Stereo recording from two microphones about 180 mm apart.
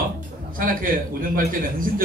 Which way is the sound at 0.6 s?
50° right (ahead or behind).